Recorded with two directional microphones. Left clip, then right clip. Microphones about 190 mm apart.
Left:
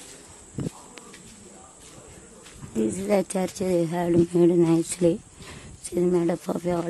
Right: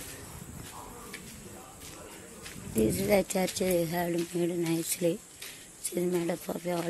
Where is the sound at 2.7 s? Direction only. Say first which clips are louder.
Left 2 dB; 20° left (ahead or behind).